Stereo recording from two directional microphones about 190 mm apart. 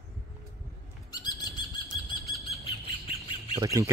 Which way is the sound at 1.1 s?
20° left (ahead or behind).